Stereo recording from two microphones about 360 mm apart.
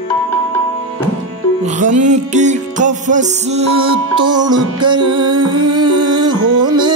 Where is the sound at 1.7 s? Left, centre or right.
Right.